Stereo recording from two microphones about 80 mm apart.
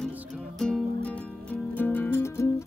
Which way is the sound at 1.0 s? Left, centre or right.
Centre.